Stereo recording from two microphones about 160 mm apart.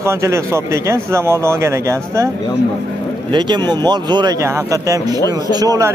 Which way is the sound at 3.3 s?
30° right (ahead or behind).